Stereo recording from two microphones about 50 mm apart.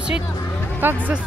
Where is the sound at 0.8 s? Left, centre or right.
Right.